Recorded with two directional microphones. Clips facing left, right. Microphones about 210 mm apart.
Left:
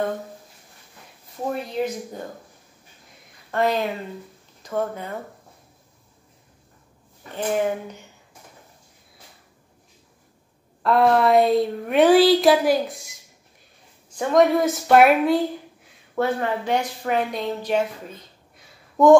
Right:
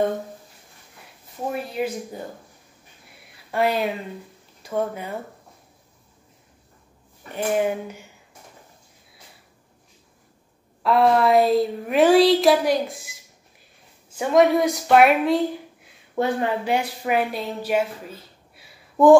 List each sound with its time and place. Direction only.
1.8 s speech: 5° right (ahead or behind)
3.5 s speech: 10° right (ahead or behind)
7.3 s speech: 10° right (ahead or behind)
10.8 s a sound: centre (ahead or behind)
14.1 s a sound: 5° right (ahead or behind)
16.2 s a woman's voice: 15° right (ahead or behind)